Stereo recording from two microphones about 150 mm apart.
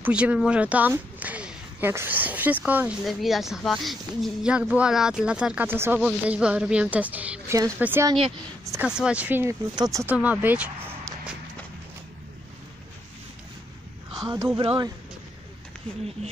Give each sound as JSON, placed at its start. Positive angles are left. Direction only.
{"t": 0.0, "sound": "a woman's voice", "side_deg": -10}
{"t": 10.0, "sound": "speech", "side_deg": -10}
{"t": 14.2, "sound": "speech", "side_deg": -25}
{"t": 14.6, "sound": "speech", "side_deg": -35}